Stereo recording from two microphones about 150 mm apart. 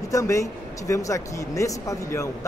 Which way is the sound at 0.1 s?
20° left (ahead or behind).